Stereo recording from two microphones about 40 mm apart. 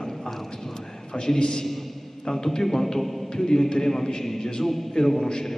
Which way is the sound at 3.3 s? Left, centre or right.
Centre.